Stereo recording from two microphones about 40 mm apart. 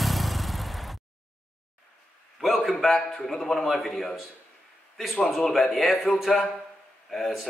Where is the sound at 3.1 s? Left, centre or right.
Centre.